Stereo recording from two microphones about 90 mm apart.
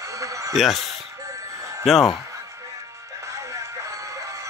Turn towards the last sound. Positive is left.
turn(degrees=-40)  # may be behind; listen again after turning